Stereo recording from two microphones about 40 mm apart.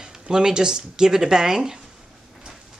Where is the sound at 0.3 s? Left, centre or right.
Centre.